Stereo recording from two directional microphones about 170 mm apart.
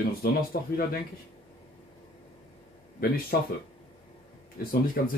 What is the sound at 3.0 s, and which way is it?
Speech, 60° left (ahead or behind).